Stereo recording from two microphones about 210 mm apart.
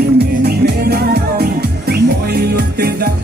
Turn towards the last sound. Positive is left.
turn(degrees=-50)  # may be behind; listen again after turning